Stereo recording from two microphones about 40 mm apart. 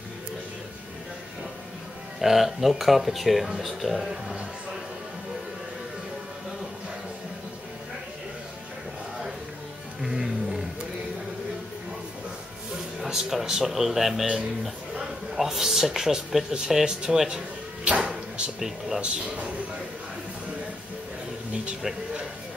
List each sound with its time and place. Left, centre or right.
2.1 s speech: centre
10.0 s music: centre
13.0 s speech: centre
14.2 s speech: right
15.3 s speech: centre
17.8 s music: right
18.9 s speech: right